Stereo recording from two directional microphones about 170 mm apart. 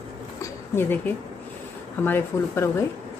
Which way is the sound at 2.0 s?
10° left (ahead or behind).